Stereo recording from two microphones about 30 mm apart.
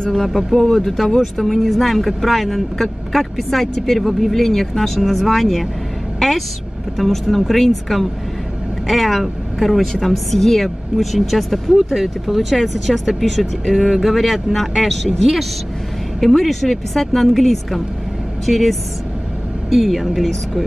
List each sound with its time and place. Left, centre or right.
0.3 s speech: centre
0.8 s a woman's voice: centre
11.0 s speech: centre
16.2 s speech: centre